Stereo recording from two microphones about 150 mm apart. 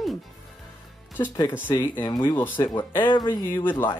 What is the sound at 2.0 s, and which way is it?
Speech, 30° left (ahead or behind).